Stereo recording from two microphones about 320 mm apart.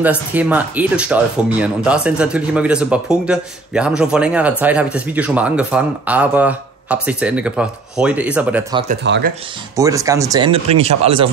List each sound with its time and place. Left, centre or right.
0.3 s speech: centre
9.0 s speech: right
9.8 s speech: centre